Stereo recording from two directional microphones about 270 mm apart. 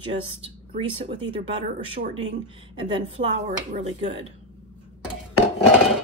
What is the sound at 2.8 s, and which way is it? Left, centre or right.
A woman's voice, right.